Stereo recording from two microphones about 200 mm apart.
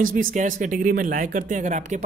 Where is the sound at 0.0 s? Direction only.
40° right (ahead or behind).